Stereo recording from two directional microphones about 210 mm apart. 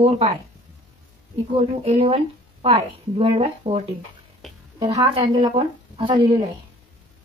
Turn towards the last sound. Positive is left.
turn(degrees=-25)  # may be behind; listen again after turning